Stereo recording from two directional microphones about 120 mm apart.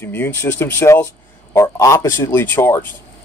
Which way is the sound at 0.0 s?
20° left (ahead or behind).